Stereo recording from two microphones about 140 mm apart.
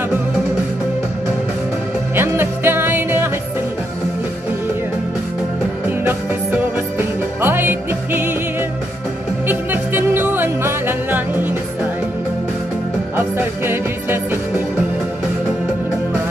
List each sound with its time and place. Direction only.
2.1 s music: 15° right (ahead or behind)
5.9 s music: 15° right (ahead or behind)
9.5 s music: 15° right (ahead or behind)
13.1 s music: 15° right (ahead or behind)